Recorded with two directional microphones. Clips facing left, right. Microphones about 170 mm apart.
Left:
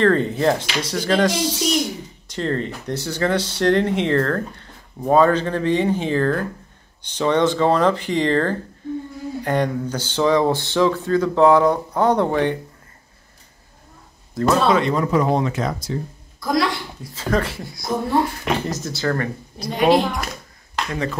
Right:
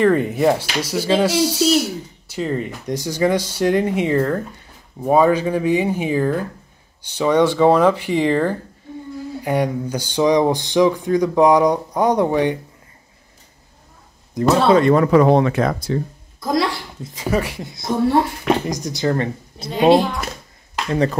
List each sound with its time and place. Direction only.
0.0 s speech: 10° right (ahead or behind)
14.4 s speech: 15° right (ahead or behind)
14.8 s speech: 55° right (ahead or behind)
16.3 s speech: 20° right (ahead or behind)
20.9 s speech: 35° right (ahead or behind)